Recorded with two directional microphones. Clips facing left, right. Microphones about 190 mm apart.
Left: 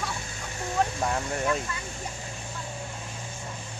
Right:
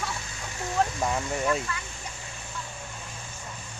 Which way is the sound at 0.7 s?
Centre (ahead or behind).